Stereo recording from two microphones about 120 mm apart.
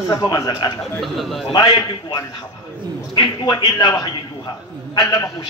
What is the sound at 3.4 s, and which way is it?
Speech, 35° left (ahead or behind).